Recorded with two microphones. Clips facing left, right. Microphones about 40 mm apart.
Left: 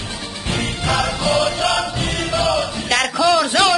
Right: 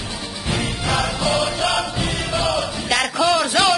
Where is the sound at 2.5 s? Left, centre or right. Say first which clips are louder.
Left 2 dB; centre.